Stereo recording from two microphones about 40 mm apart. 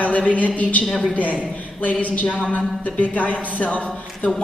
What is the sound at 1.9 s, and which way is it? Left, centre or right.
A woman's voice, left.